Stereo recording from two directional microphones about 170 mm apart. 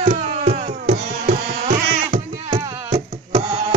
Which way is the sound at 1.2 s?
55° right (ahead or behind).